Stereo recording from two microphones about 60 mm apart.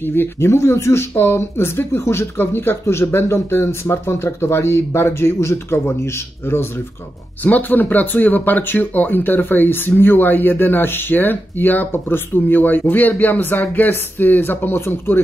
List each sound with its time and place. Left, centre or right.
0.0 s speech: left
7.4 s speech: left